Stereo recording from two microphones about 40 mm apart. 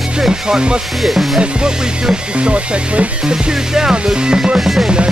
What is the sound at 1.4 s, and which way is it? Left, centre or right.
Speech, right.